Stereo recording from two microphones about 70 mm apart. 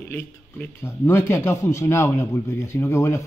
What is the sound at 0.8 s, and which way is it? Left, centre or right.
A man's voice, left.